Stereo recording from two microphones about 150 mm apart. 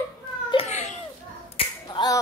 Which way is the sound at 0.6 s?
50° left (ahead or behind).